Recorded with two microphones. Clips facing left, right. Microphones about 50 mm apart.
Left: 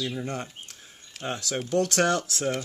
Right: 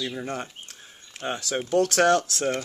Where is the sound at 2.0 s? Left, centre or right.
Centre.